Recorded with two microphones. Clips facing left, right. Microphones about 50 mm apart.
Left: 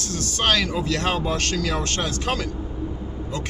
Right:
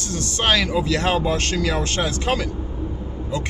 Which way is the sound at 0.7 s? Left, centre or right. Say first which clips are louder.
Right 3 dB; centre.